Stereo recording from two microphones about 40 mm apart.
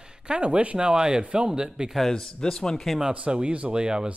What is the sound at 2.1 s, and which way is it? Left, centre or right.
Speech, centre.